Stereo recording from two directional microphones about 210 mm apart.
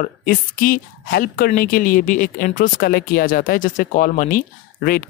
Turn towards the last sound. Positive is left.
turn(degrees=40)  # may be behind; listen again after turning